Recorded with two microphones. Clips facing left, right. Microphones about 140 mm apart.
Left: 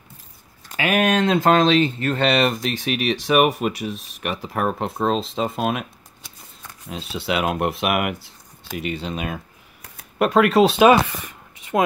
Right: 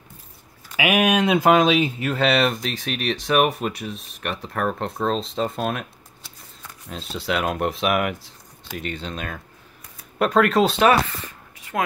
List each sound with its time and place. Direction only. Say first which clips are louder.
0.7 s speech: even; 10° right (ahead or behind); by 5.9 s 5° left (ahead or behind)
6.9 s speech: left 1 dB; centre (ahead or behind)
10.8 s a sound: left 4 dB; 15° left (ahead or behind)